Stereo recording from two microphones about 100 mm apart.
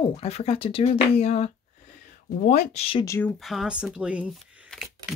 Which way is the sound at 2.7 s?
70° left (ahead or behind).